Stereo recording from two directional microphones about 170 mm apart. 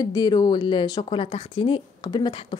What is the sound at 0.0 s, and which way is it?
A woman's voice, 25° left (ahead or behind).